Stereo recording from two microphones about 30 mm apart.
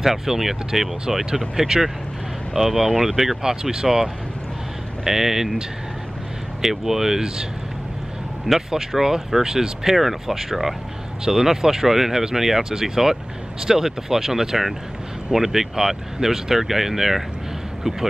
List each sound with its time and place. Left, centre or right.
0.0 s speech: centre
6.6 s speech: centre
8.5 s speech: centre